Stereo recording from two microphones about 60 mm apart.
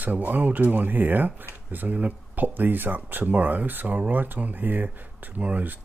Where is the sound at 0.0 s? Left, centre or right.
Right.